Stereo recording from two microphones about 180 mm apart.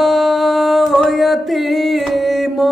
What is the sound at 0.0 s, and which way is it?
Music, centre (ahead or behind).